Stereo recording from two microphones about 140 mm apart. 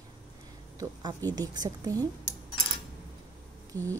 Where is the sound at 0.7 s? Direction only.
25° right (ahead or behind).